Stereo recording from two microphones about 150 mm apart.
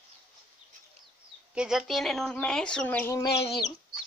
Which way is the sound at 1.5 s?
5° right (ahead or behind).